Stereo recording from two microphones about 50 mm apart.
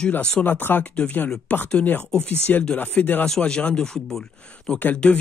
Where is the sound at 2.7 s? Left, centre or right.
Left.